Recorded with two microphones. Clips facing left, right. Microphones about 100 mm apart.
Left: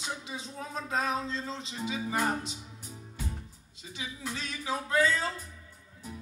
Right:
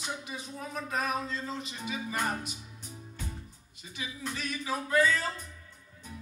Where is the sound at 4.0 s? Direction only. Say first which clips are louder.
Right 1 dB; 25° left (ahead or behind).